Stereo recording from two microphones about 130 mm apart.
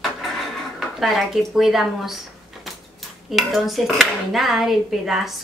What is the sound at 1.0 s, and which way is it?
Speech, centre (ahead or behind).